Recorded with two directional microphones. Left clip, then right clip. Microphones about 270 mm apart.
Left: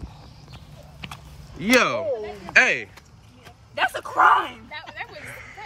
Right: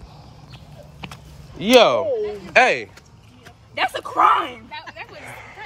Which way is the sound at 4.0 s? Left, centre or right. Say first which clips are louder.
Right 1 dB; right.